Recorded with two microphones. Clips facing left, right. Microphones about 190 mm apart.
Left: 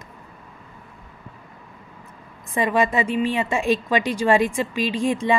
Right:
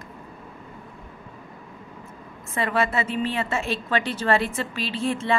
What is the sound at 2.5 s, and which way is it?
A woman's voice, 15° left (ahead or behind).